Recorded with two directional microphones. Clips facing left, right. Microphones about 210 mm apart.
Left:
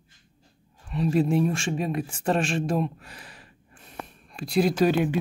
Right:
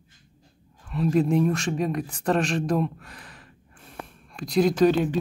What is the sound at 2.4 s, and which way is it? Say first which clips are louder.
Speech: right 1 dB; 25° left (ahead or behind).